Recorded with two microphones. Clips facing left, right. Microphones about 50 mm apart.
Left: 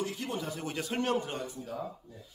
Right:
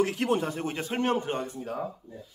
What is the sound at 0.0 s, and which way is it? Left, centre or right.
Speech, right.